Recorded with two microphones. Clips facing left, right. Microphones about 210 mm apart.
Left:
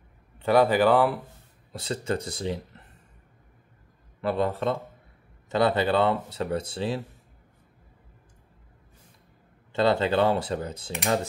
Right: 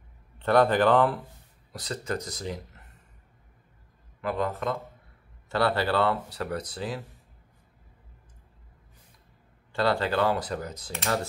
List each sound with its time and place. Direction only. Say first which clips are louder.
0.4 s speech: left 1 dB; 10° left (ahead or behind)
1.7 s speech: left 3 dB; 25° left (ahead or behind)
4.2 s speech: left 3 dB; 30° left (ahead or behind)
5.5 s speech: left 3 dB; 20° left (ahead or behind)
9.7 s speech: left 3 dB; 20° left (ahead or behind)
10.9 s speech: left 3 dB; 15° left (ahead or behind)